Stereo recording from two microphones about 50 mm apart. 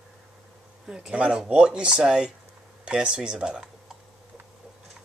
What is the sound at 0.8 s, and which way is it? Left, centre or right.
Speech, centre.